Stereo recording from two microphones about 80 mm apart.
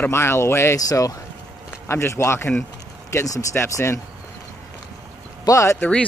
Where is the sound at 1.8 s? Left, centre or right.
Left.